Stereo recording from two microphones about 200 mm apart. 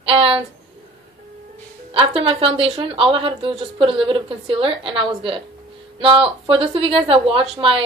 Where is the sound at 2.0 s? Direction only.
30° right (ahead or behind).